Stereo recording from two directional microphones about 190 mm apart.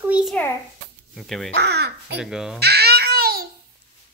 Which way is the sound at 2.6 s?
55° right (ahead or behind).